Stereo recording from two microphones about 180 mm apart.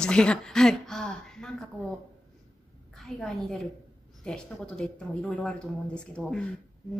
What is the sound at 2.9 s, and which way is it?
A woman's voice, centre (ahead or behind).